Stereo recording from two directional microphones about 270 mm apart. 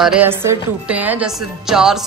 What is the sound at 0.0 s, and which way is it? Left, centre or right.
A woman's voice, centre.